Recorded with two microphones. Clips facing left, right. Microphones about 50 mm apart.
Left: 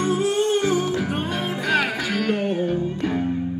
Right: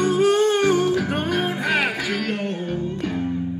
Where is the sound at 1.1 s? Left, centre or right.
Right.